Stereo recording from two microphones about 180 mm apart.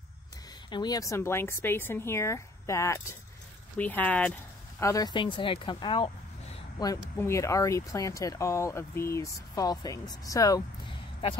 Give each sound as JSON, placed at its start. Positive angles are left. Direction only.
{"t": 0.7, "sound": "speech", "side_deg": 25}
{"t": 6.8, "sound": "speech", "side_deg": 15}